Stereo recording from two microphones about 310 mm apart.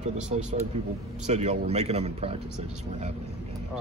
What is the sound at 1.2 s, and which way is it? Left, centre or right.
A man's voice, right.